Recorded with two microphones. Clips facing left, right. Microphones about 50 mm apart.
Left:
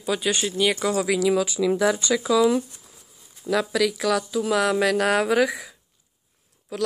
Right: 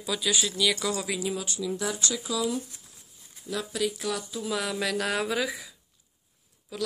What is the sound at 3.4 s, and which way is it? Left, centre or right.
Speech, left.